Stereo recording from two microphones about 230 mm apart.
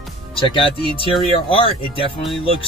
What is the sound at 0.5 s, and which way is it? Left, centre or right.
Speech, left.